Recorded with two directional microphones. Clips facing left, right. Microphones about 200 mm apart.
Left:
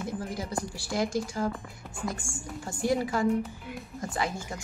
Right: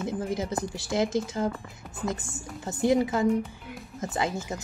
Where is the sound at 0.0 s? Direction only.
20° right (ahead or behind).